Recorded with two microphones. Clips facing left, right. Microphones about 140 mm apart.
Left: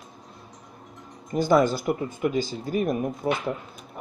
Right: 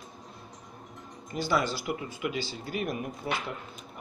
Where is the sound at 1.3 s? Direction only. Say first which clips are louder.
Left 8 dB; 45° left (ahead or behind).